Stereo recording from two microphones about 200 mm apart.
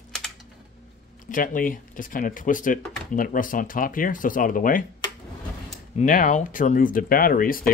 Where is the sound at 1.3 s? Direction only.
45° left (ahead or behind).